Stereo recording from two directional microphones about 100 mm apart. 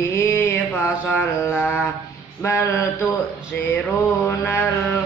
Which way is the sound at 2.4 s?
25° left (ahead or behind).